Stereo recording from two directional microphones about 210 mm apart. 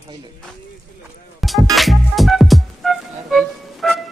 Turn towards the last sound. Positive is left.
turn(degrees=0)  # may be behind; listen again after turning